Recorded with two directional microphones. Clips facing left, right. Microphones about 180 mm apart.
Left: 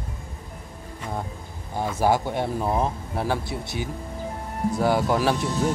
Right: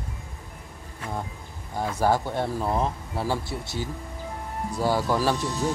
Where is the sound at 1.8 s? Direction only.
15° left (ahead or behind).